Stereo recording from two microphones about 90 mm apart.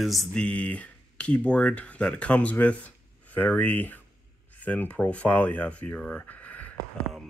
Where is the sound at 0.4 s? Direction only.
15° left (ahead or behind).